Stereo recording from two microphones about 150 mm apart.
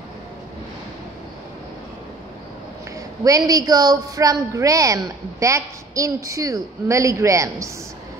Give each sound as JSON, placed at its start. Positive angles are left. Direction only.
{"t": 3.3, "sound": "a woman's voice", "side_deg": -25}